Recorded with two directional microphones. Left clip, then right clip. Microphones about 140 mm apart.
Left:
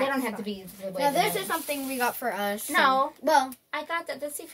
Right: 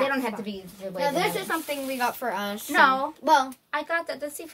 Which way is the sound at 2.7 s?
15° left (ahead or behind).